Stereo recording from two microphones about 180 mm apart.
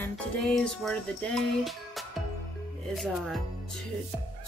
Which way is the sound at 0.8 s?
Centre (ahead or behind).